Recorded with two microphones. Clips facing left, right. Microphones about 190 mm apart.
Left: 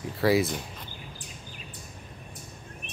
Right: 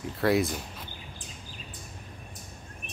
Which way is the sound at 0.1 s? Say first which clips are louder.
Left 1 dB; centre (ahead or behind).